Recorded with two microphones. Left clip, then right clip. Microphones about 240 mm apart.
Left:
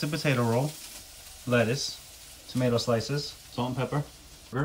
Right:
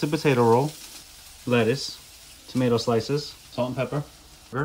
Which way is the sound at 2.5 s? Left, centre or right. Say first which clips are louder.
Right 4 dB; right.